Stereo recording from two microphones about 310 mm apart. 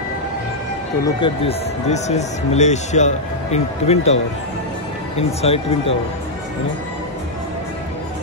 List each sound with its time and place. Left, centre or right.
1.0 s speech: centre